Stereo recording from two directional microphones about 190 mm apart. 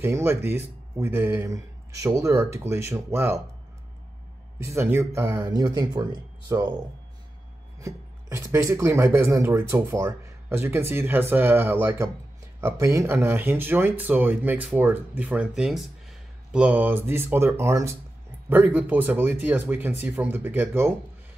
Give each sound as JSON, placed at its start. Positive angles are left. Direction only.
{"t": 0.0, "sound": "speech", "side_deg": -10}
{"t": 4.6, "sound": "speech", "side_deg": -15}
{"t": 7.8, "sound": "speech", "side_deg": -15}